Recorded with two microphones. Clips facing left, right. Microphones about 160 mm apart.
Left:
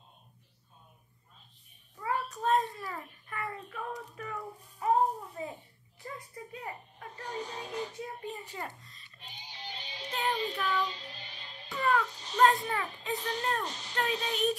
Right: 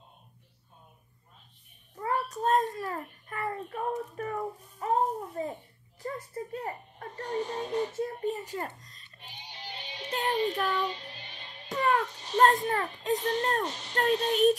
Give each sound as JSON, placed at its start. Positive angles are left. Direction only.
{"t": 2.0, "sound": "a child's voice", "side_deg": -45}
{"t": 10.0, "sound": "child singing", "side_deg": -40}
{"t": 11.7, "sound": "a child's voice", "side_deg": -45}